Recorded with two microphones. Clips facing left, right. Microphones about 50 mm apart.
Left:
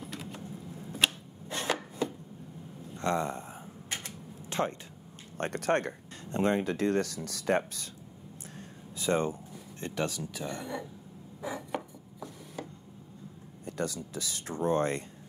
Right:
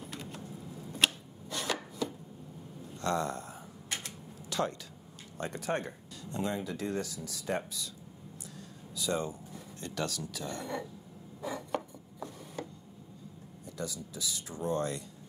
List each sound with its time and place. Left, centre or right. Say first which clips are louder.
0.0 s vehicle: left 2 dB; centre
0.4 s a sound: left 2 dB; left
1.5 s chopping: left 3 dB; left
3.0 s typewriter: left 2 dB; left
5.4 s speech: left 5 dB; left
6.2 s speech: left 7 dB; left
8.5 s a sound: right 1 dB; left; by 11.8 s centre
13.7 s speech: left 5 dB; left
14.6 s speech: left 5 dB; left